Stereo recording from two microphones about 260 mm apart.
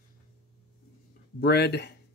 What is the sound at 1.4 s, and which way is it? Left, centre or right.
Speech, left.